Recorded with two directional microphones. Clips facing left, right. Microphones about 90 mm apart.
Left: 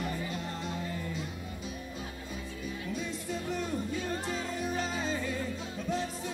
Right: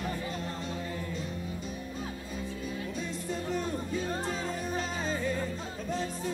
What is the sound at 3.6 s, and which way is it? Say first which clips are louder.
Music: right 1 dB; 35° right (ahead or behind).